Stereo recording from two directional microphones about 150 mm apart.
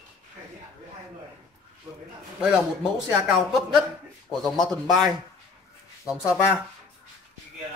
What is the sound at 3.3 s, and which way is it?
Speech, centre (ahead or behind).